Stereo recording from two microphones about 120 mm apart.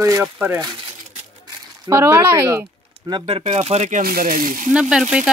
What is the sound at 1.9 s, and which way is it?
Speech, 25° right (ahead or behind).